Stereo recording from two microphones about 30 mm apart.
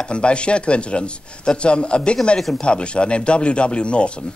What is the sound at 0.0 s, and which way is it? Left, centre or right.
Speech, left.